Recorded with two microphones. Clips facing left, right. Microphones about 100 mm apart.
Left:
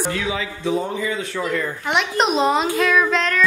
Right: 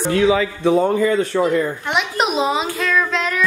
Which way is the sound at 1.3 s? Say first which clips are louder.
Right 6 dB; 30° right (ahead or behind).